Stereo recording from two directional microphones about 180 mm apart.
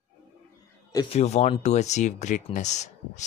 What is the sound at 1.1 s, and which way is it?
Speech, 35° left (ahead or behind).